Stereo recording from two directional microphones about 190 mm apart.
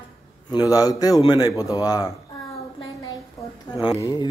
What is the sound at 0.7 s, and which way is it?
Speech, 20° left (ahead or behind).